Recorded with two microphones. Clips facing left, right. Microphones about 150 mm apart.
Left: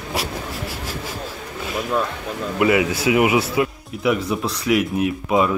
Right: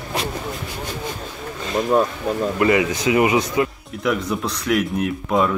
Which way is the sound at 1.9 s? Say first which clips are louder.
Right 6 dB; 40° right (ahead or behind).